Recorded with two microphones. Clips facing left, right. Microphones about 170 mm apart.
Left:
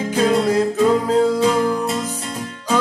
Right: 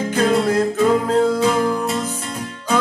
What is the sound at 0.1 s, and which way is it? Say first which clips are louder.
Music: left 1 dB; 5° left (ahead or behind).